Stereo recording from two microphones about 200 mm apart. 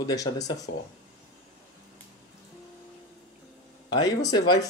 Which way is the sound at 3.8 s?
20° left (ahead or behind).